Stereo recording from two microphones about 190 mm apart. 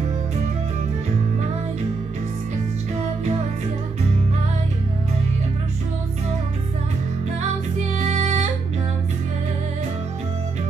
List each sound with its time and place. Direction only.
8.0 s music: 35° right (ahead or behind)